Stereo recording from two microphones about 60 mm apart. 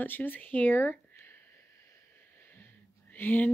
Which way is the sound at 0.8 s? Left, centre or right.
Left.